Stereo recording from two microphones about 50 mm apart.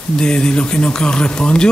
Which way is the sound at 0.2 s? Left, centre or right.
Centre.